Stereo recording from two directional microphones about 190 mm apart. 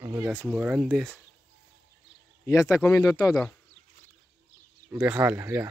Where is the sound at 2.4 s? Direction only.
15° left (ahead or behind).